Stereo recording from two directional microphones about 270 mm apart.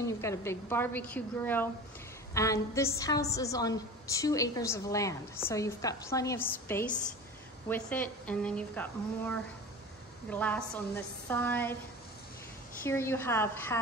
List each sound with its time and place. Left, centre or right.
0.0 s a woman's voice: centre
12.8 s a woman's voice: centre